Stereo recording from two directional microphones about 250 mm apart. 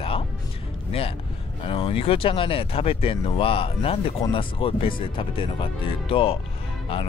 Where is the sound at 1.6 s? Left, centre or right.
Left.